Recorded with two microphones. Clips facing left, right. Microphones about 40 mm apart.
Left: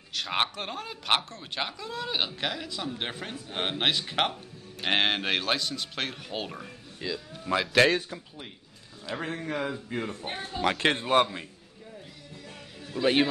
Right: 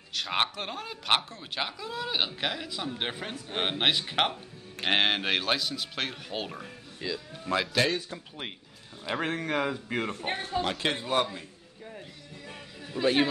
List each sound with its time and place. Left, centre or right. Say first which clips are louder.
0.1 s speech: even; centre
9.2 s speech: right 3 dB; right
10.0 s speech: right 3 dB; right
10.8 s a man's voice: left 7 dB; left
13.0 s speech: left 1 dB; centre